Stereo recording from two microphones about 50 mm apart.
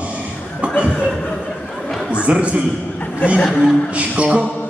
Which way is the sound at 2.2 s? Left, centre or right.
Right.